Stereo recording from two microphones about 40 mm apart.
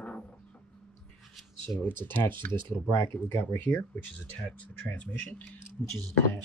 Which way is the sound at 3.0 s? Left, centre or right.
Left.